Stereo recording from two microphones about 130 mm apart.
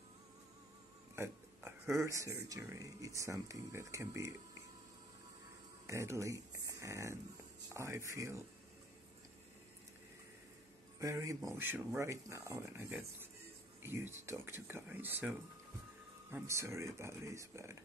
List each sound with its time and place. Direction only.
1.1 s a sound: 20° right (ahead or behind)
2.0 s speech: 25° right (ahead or behind)
5.9 s speech: 20° right (ahead or behind)
11.0 s speech: 25° right (ahead or behind)